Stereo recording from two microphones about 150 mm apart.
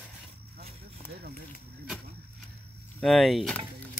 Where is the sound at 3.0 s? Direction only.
Centre (ahead or behind).